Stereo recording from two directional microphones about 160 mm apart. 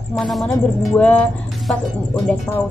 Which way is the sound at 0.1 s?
Centre (ahead or behind).